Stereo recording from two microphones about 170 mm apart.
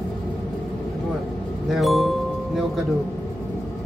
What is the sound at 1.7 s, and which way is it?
Speech, centre (ahead or behind).